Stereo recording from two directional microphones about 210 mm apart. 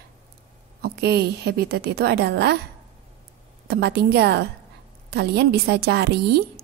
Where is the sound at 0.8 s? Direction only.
50° right (ahead or behind).